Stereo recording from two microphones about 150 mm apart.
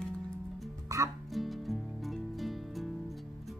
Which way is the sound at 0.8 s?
20° right (ahead or behind).